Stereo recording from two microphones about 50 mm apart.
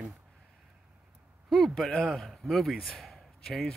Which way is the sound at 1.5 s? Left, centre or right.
Centre.